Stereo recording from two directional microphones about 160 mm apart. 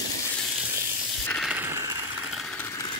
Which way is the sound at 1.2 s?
5° left (ahead or behind).